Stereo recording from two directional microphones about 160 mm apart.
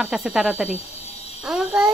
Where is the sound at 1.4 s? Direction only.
Centre (ahead or behind).